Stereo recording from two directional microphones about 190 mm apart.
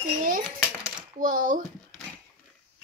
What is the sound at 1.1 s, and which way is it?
Speech, 45° right (ahead or behind).